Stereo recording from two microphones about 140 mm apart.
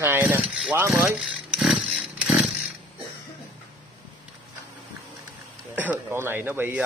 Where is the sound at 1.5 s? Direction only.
5° right (ahead or behind).